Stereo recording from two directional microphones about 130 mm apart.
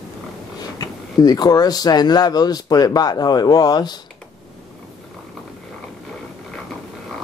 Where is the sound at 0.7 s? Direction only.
30° left (ahead or behind).